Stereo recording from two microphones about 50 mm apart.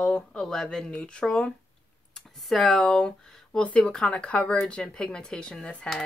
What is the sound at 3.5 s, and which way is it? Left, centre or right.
Speech, left.